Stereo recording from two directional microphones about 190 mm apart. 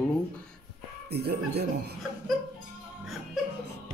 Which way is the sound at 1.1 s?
60° right (ahead or behind).